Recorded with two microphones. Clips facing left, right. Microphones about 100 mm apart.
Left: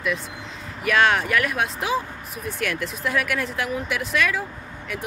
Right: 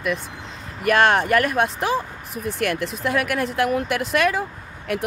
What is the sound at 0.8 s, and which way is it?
Speech, 45° right (ahead or behind).